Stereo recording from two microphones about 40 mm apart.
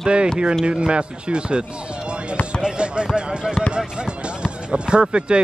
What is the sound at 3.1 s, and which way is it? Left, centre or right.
Speech, right.